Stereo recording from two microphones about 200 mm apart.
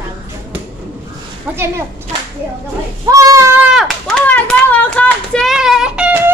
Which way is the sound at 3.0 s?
15° right (ahead or behind).